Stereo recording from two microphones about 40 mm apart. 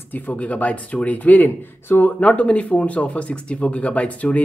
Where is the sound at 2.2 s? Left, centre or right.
Left.